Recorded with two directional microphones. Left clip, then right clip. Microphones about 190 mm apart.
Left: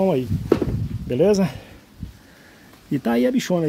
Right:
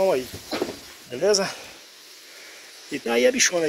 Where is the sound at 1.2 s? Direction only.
30° left (ahead or behind).